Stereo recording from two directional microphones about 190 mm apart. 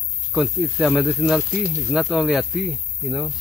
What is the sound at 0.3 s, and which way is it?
Speech, centre (ahead or behind).